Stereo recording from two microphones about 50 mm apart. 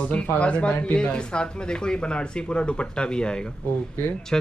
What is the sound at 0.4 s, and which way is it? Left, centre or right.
Speech, left.